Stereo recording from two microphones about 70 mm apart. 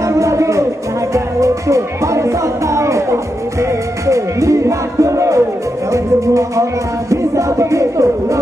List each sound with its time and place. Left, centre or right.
0.2 s music: right